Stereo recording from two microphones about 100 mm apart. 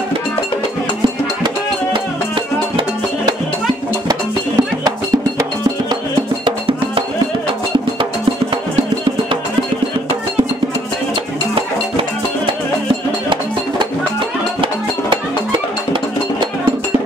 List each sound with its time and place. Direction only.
4.1 s music: 40° right (ahead or behind)
14.6 s music: 55° right (ahead or behind)